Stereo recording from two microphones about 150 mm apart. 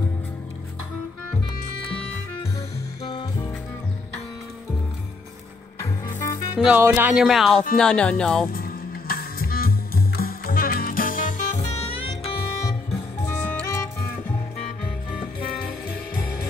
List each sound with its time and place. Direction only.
3.1 s music: 30° left (ahead or behind)
6.2 s music: 20° left (ahead or behind)
6.8 s speech: 15° right (ahead or behind); by 8.5 s 5° left (ahead or behind)
8.5 s music: 80° left; by 11.8 s 50° left (ahead or behind)
13.3 s music: 10° left (ahead or behind)